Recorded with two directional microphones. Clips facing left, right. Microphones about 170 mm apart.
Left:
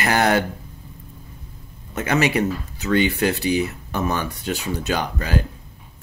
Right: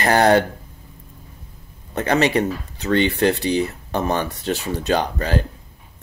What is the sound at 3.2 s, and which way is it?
Speech, 5° left (ahead or behind).